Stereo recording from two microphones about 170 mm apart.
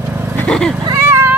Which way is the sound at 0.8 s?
15° right (ahead or behind).